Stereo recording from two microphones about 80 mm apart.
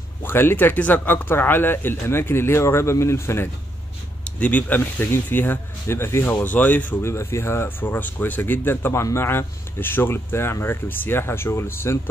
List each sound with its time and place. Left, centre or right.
0.2 s speech: left
4.2 s speech: centre
6.4 s speech: left